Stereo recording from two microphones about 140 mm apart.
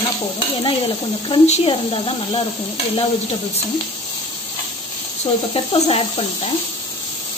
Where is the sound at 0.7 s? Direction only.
35° left (ahead or behind).